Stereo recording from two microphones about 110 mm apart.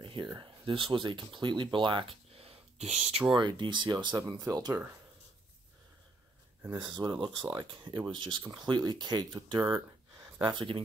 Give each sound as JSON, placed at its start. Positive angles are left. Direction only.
{"t": 0.0, "sound": "a sound", "side_deg": -50}
{"t": 0.4, "sound": "speech", "side_deg": -50}
{"t": 3.3, "sound": "speech", "side_deg": -45}
{"t": 4.3, "sound": "speech", "side_deg": -35}
{"t": 6.8, "sound": "speech", "side_deg": -45}